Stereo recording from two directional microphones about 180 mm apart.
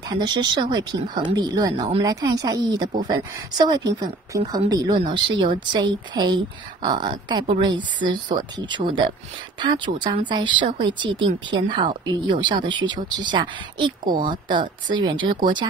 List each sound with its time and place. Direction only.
0.1 s speech: 25° right (ahead or behind)